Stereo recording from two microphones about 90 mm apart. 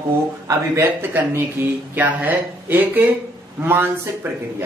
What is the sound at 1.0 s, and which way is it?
Speech, 25° right (ahead or behind).